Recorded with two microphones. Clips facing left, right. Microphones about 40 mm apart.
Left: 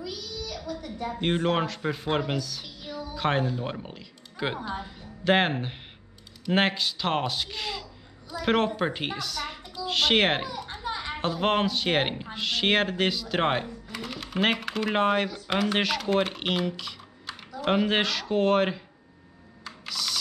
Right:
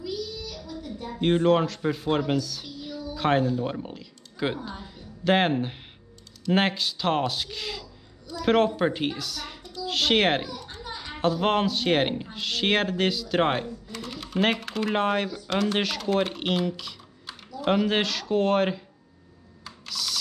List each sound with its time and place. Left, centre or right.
0.9 s speech: centre
2.8 s a sound: left
3.2 s a woman's voice: centre
10.6 s children playing: left
11.1 s speech: centre
19.6 s computer keyboard: centre